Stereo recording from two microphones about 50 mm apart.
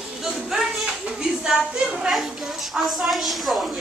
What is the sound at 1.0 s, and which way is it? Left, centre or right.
Speech, centre.